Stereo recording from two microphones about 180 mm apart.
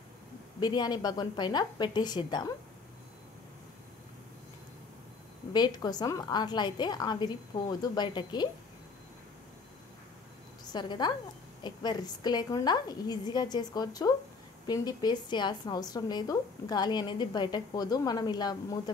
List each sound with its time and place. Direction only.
0.6 s speech: 25° left (ahead or behind)
5.5 s speech: 25° left (ahead or behind)
10.6 s a woman's voice: 25° left (ahead or behind)